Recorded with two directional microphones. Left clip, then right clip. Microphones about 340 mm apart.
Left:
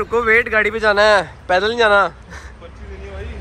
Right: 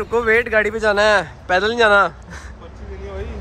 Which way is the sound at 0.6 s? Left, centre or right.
Centre.